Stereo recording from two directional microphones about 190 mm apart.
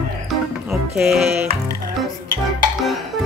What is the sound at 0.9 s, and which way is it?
Music, centre (ahead or behind).